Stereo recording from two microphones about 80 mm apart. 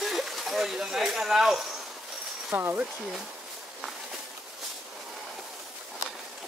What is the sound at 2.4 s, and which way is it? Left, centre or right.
Speech, right.